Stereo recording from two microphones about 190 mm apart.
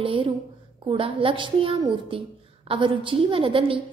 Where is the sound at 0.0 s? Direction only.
25° right (ahead or behind).